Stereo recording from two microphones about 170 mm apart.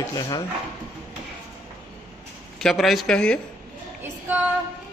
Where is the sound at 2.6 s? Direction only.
Centre (ahead or behind).